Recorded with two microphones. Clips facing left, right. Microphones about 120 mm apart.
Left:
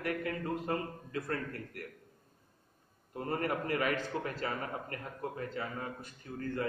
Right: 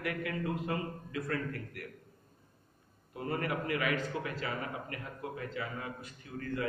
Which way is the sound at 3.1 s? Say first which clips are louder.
Left 1 dB; 40° left (ahead or behind).